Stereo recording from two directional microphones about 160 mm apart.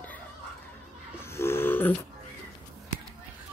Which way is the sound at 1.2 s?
15° left (ahead or behind).